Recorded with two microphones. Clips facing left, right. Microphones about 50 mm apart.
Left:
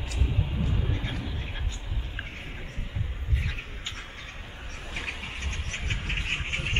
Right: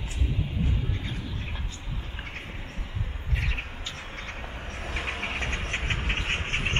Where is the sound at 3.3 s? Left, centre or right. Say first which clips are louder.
Right 3 dB; right.